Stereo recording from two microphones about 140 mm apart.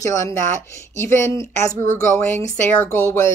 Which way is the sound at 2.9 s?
20° left (ahead or behind).